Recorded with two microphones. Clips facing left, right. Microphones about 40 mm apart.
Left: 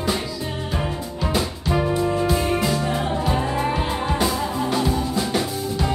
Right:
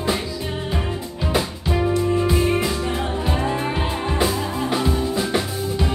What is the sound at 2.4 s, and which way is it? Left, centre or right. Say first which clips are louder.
Music: even; centre.